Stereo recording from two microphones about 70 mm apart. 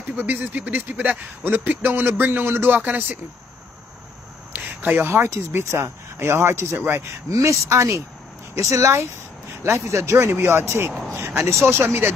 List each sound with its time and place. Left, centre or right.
0.2 s speech: right
4.5 s speech: right
7.2 s speech: right